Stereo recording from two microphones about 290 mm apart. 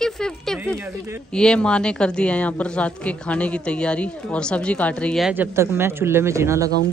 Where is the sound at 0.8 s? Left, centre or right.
Centre.